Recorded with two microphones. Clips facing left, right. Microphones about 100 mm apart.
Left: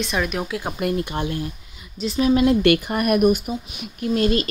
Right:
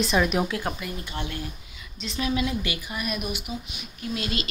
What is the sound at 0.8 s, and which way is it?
Speech, 55° left (ahead or behind).